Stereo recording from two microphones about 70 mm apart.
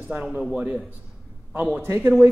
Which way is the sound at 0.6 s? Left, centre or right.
Centre.